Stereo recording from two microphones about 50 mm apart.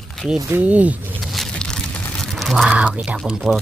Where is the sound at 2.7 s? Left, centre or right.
Right.